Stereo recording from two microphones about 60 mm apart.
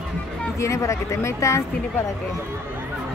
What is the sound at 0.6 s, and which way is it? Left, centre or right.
A woman's voice, left.